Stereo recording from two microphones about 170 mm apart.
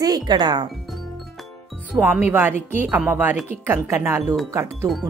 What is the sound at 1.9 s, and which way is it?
Speech, 15° right (ahead or behind).